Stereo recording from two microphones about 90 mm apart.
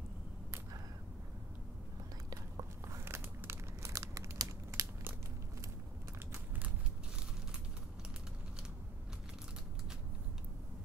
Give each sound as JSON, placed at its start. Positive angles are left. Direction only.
{"t": 2.5, "sound": "crumpling", "side_deg": -30}